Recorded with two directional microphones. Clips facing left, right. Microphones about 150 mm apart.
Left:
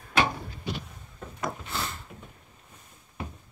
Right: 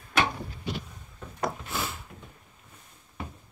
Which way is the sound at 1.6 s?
5° right (ahead or behind).